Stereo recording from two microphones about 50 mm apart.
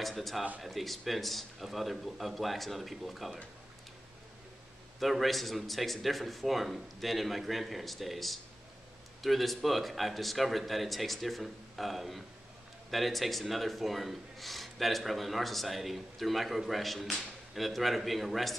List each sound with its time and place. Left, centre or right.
0.0 s speech: centre
5.0 s speech: centre